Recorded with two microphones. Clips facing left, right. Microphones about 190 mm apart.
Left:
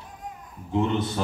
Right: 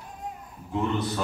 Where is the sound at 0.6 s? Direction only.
25° left (ahead or behind).